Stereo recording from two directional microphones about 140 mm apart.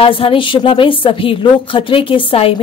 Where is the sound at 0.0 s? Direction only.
40° left (ahead or behind).